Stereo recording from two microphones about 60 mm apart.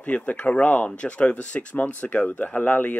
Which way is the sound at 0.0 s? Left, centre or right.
Left.